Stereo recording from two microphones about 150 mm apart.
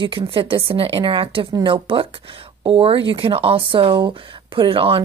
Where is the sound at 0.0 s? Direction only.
35° right (ahead or behind).